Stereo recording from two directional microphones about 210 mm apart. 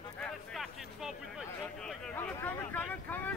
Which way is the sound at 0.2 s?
Centre (ahead or behind).